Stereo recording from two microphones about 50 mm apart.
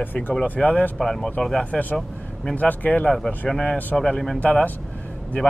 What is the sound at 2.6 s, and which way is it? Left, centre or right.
Speech, left.